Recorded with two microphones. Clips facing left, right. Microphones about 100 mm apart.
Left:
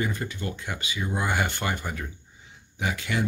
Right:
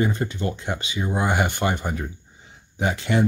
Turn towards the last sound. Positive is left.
turn(degrees=-30)  # may be behind; listen again after turning